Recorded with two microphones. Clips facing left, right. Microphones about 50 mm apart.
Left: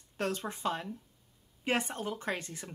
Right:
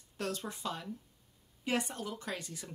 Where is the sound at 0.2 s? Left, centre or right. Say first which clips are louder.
Left 4 dB; left.